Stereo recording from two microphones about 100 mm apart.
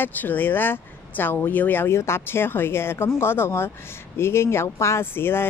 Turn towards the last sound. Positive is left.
turn(degrees=25)  # may be behind; listen again after turning